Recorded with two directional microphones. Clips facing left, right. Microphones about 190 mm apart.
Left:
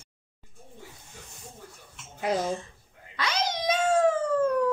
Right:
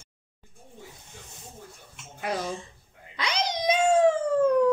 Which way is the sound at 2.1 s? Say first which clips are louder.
Left 3 dB; 25° left (ahead or behind).